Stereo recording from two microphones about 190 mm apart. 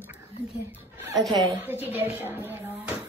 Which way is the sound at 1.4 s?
15° right (ahead or behind).